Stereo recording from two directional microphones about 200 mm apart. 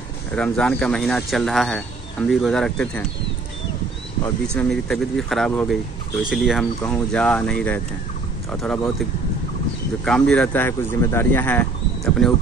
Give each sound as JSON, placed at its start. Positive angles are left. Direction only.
{"t": 0.4, "sound": "speech", "side_deg": 5}
{"t": 4.6, "sound": "speech", "side_deg": 5}
{"t": 10.0, "sound": "speech", "side_deg": 5}